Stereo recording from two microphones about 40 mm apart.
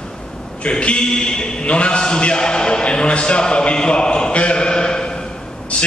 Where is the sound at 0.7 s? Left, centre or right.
Left.